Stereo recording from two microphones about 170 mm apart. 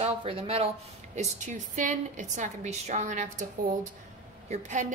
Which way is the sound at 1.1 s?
45° right (ahead or behind).